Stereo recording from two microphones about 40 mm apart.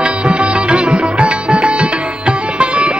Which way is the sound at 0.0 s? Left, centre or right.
Right.